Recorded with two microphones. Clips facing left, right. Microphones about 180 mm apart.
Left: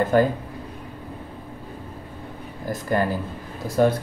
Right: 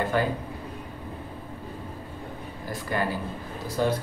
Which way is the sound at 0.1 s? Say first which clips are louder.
Left 8 dB; 45° left (ahead or behind).